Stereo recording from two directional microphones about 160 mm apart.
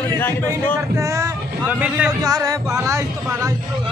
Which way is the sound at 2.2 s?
25° right (ahead or behind).